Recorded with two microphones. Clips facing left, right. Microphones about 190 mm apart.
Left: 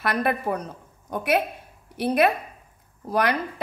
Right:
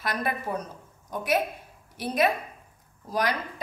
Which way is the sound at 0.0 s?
60° left (ahead or behind).